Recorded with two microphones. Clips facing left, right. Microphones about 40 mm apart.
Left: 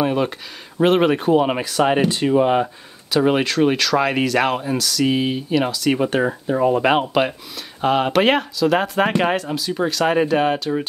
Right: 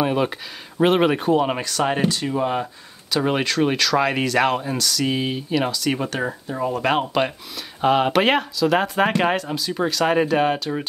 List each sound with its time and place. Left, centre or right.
0.0 s speech: centre
2.0 s speech: left
3.1 s speech: centre
6.0 s speech: centre
7.8 s speech: centre